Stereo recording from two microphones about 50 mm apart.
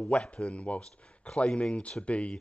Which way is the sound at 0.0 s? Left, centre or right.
Left.